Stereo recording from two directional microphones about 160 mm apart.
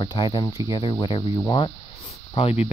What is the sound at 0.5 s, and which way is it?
Speech, 20° right (ahead or behind).